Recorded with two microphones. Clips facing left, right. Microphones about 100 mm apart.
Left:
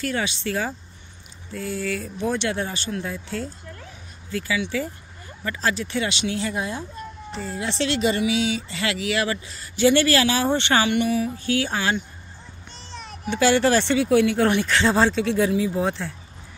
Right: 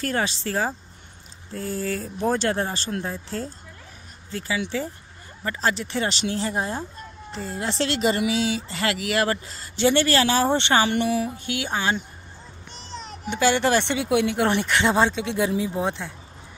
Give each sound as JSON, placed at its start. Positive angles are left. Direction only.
{"t": 0.0, "sound": "speech", "side_deg": -40}
{"t": 9.8, "sound": "speech", "side_deg": -25}
{"t": 10.9, "sound": "speech", "side_deg": -35}
{"t": 11.3, "sound": "speech", "side_deg": -20}
{"t": 13.3, "sound": "speech", "side_deg": -15}